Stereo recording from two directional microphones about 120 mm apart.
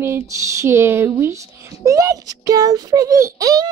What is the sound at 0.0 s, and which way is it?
A child's voice, 20° right (ahead or behind).